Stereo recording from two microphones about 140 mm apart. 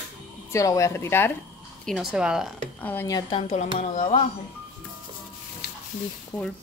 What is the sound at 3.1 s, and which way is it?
Speech, 30° left (ahead or behind).